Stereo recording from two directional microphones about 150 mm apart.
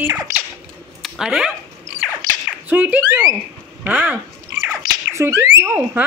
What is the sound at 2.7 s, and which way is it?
Speech, 10° right (ahead or behind).